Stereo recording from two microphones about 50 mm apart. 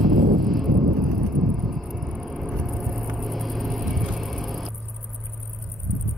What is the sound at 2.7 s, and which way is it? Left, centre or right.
Vehicle, centre.